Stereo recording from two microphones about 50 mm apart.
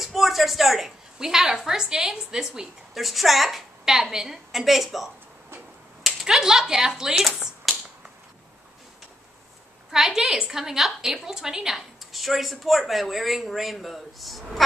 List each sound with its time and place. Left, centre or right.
0.0 s a woman's voice: centre
2.9 s a woman's voice: centre
6.2 s speech: centre
9.8 s a woman's voice: centre